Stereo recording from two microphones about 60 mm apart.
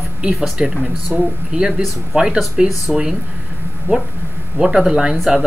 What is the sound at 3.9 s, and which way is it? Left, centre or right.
Speech, right.